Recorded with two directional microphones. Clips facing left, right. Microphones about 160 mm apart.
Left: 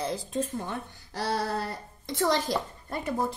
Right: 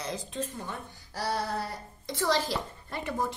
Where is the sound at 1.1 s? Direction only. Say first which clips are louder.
Left 2 dB; 65° left (ahead or behind).